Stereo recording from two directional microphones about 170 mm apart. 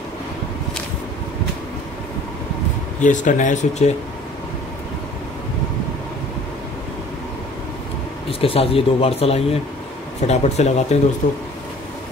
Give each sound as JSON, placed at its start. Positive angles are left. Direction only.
{"t": 3.0, "sound": "speech", "side_deg": 45}
{"t": 8.3, "sound": "speech", "side_deg": 35}